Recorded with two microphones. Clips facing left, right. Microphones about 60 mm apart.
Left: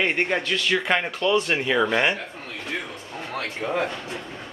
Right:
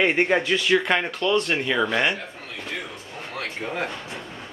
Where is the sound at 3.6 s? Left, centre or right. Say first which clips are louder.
Left 6 dB; left.